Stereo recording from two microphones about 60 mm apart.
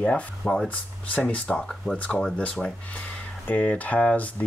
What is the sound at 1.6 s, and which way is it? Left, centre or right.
Speech, centre.